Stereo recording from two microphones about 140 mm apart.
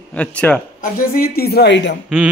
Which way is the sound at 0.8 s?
90° left.